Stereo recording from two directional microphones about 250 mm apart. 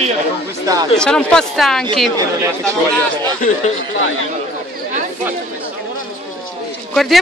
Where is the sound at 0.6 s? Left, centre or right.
Centre.